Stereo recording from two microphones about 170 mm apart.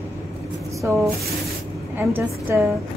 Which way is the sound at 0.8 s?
15° right (ahead or behind).